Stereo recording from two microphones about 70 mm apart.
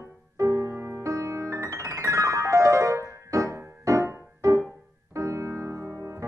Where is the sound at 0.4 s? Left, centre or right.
Right.